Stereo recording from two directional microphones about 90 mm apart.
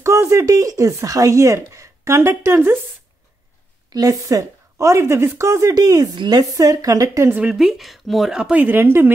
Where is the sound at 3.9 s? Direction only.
40° right (ahead or behind).